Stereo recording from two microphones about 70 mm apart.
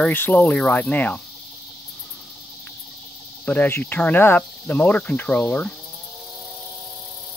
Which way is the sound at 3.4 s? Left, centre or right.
Left.